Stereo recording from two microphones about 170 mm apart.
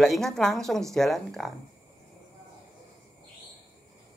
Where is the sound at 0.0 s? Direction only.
Centre (ahead or behind).